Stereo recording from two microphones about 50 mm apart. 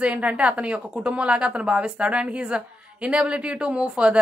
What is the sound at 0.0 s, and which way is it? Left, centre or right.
A woman's voice, right.